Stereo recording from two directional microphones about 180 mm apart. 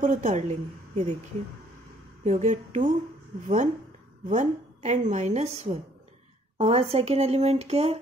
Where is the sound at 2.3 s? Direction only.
40° right (ahead or behind).